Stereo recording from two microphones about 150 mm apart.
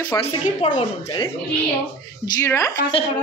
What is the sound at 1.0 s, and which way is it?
Speech, 30° left (ahead or behind).